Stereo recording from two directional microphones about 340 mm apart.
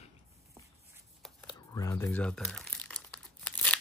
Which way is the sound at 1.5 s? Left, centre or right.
Centre.